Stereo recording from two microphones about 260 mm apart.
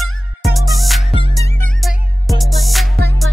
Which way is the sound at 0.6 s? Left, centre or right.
Centre.